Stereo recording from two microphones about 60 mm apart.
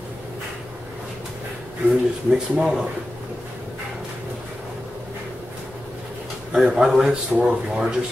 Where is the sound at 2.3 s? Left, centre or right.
Centre.